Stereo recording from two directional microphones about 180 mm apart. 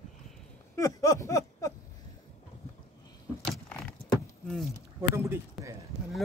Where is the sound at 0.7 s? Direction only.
20° left (ahead or behind).